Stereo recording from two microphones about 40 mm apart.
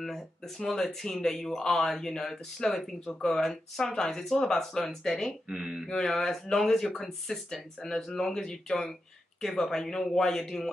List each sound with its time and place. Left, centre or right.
0.0 s speech: centre
5.5 s speech: centre
5.9 s speech: centre